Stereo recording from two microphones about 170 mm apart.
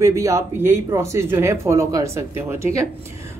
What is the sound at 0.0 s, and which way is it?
A woman's voice, 15° right (ahead or behind).